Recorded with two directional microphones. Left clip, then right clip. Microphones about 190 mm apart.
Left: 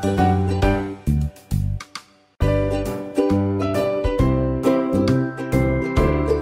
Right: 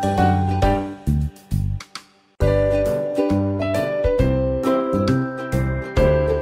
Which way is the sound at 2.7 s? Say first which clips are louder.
Right 6 dB; 5° left (ahead or behind).